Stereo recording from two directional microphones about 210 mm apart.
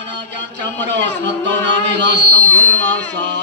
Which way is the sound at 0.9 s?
55° right (ahead or behind).